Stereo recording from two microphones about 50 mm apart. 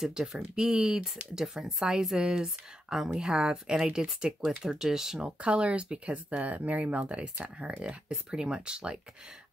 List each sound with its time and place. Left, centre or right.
0.0 s speech: centre
5.4 s speech: right